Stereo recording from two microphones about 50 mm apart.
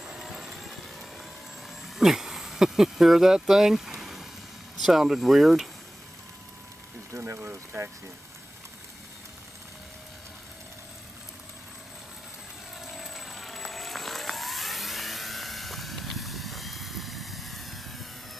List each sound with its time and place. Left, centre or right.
0.0 s vehicle: centre
2.0 s speech: centre
3.3 s a sound: centre
4.8 s speech: centre
7.1 s speech: right
7.4 s speech: right
12.8 s vehicle: centre